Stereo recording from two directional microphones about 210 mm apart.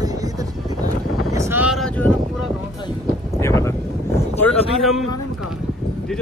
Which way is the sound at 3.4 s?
15° left (ahead or behind).